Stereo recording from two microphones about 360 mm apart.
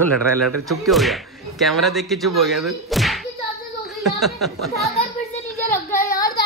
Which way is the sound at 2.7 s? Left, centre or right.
Centre.